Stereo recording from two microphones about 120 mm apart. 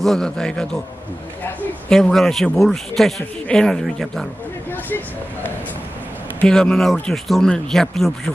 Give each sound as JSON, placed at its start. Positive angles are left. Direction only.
{"t": 0.0, "sound": "speech", "side_deg": 5}
{"t": 4.8, "sound": "vehicle", "side_deg": 15}
{"t": 6.4, "sound": "speech", "side_deg": 5}